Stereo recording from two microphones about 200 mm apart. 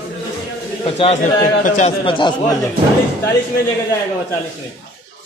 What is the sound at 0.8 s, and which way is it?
A man's voice, 30° left (ahead or behind).